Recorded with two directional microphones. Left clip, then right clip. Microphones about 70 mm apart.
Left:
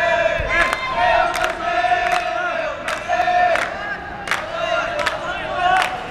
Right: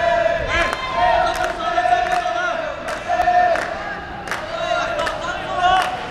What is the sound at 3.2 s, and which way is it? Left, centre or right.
Crowd, left.